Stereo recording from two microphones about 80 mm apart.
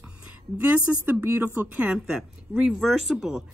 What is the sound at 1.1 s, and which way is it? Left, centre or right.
Speech, right.